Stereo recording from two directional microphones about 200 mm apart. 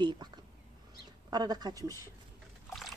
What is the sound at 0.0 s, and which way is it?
Whispering, 20° right (ahead or behind).